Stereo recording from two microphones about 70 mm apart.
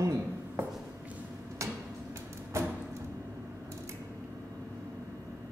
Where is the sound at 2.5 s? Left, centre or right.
Right.